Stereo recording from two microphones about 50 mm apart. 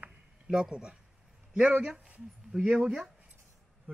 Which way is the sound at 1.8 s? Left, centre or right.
Right.